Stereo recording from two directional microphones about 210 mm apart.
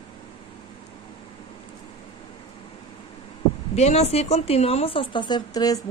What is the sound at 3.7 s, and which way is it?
Speech, 30° left (ahead or behind).